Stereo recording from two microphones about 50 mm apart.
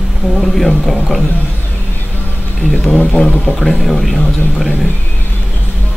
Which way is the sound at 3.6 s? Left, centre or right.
Centre.